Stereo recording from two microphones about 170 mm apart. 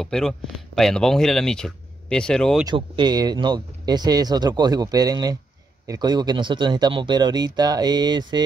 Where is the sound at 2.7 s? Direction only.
25° right (ahead or behind).